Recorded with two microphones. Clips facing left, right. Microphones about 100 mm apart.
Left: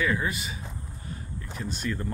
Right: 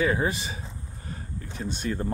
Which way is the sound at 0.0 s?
30° right (ahead or behind).